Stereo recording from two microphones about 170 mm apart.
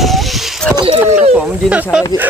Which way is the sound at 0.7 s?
30° right (ahead or behind).